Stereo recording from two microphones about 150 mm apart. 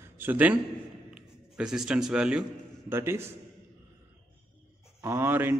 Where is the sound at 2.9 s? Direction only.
15° right (ahead or behind).